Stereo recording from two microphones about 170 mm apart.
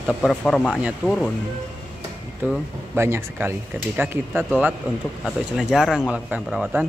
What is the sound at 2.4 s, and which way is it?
Speech, 10° right (ahead or behind).